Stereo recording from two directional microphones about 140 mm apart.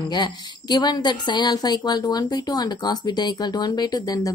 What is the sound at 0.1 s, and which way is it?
A woman's voice, 30° left (ahead or behind).